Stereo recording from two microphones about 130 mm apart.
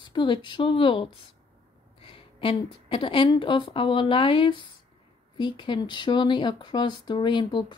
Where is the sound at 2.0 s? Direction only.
45° left (ahead or behind).